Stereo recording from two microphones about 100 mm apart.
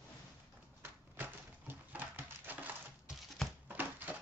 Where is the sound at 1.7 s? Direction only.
20° right (ahead or behind).